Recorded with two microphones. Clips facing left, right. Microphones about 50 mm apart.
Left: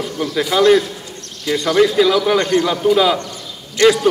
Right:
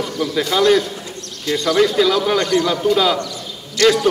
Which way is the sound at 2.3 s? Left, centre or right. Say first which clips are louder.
Left 1 dB; left.